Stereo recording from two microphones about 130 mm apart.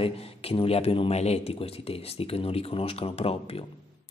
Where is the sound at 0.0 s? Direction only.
50° left (ahead or behind).